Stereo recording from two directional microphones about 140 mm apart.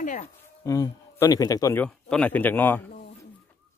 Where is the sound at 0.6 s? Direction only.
20° left (ahead or behind).